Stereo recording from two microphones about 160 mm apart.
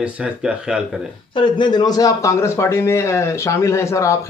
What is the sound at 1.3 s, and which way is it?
A man's voice, 30° left (ahead or behind).